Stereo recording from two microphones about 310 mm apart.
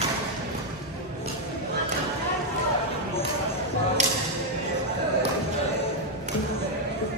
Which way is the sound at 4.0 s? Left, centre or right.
Right.